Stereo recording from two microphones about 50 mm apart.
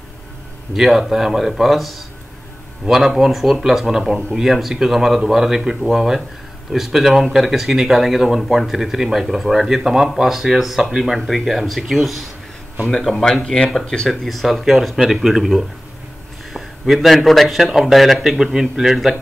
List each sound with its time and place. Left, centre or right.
0.7 s a man's voice: centre
12.9 s speech: centre
14.0 s a man's voice: centre